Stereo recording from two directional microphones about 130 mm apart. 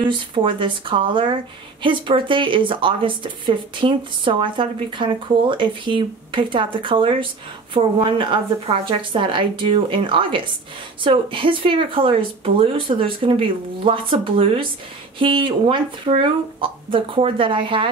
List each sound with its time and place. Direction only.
0.0 s speech: 40° right (ahead or behind)